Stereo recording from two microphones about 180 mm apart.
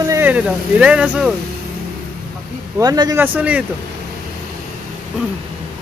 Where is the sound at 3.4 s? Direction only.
5° right (ahead or behind).